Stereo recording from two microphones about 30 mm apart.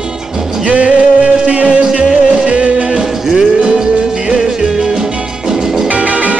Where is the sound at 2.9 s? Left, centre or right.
Right.